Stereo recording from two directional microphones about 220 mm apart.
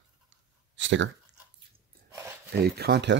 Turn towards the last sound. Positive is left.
turn(degrees=-50)  # may be behind; listen again after turning